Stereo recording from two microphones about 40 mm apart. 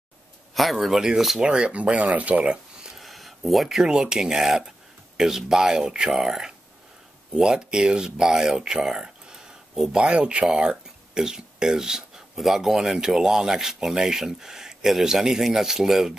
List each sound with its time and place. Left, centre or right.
0.6 s speech: centre
1.4 s speech: right
3.0 s a sound: centre
3.8 s speech: centre
9.0 s a sound: centre
10.2 s speech: right
10.5 s speech: centre